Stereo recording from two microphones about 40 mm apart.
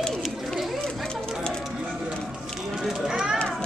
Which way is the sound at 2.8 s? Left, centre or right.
Centre.